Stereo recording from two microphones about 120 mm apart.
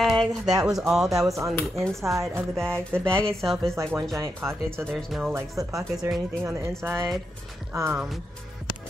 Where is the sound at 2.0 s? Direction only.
25° right (ahead or behind).